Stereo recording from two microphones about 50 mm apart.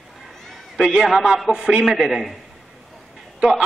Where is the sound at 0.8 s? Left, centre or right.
Centre.